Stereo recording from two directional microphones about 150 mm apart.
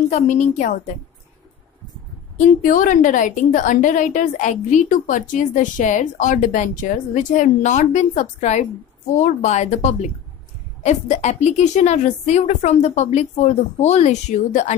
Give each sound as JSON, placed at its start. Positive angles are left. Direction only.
{"t": 0.1, "sound": "a woman's voice", "side_deg": 50}
{"t": 2.3, "sound": "a woman's voice", "side_deg": 60}